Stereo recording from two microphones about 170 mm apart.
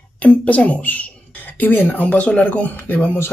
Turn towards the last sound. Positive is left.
turn(degrees=10)  # may be behind; listen again after turning